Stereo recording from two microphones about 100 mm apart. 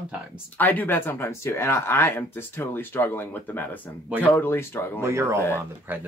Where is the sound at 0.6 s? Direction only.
20° left (ahead or behind).